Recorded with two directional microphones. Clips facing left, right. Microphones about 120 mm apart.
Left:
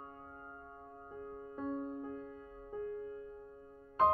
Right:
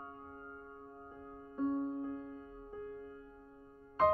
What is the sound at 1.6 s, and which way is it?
Music, 15° right (ahead or behind).